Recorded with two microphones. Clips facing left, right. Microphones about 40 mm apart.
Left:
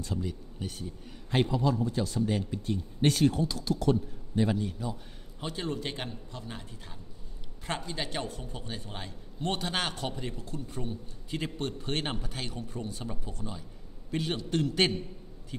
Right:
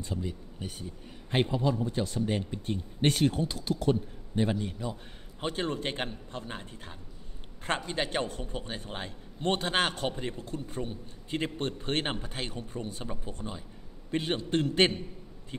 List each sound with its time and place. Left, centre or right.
0.0 s speech: centre
1.3 s speech: right
5.4 s a man's voice: right
13.0 s speech: centre
13.3 s a man's voice: right